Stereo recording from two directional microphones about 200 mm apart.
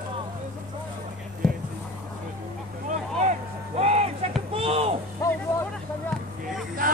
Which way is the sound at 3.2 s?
35° right (ahead or behind).